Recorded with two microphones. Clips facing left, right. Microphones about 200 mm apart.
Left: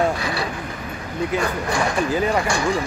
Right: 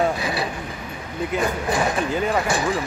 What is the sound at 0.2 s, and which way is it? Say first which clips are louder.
Vehicle: even; 20° right (ahead or behind).